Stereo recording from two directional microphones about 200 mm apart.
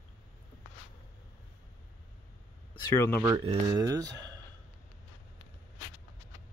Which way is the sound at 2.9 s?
15° left (ahead or behind).